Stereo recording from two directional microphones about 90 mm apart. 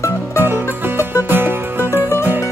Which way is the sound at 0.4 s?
25° right (ahead or behind).